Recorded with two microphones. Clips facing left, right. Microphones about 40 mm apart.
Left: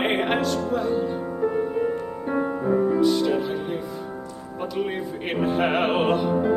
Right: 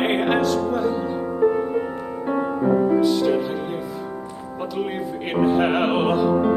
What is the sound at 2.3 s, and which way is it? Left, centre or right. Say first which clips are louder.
Music: right 2 dB; centre.